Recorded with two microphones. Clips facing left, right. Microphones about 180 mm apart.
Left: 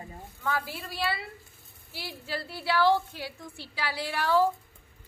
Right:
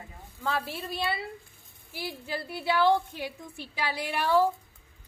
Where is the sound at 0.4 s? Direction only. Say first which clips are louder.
Right 1 dB; 30° right (ahead or behind).